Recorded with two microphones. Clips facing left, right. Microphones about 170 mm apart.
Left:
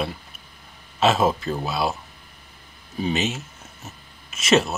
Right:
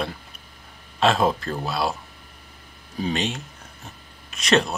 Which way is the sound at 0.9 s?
5° left (ahead or behind).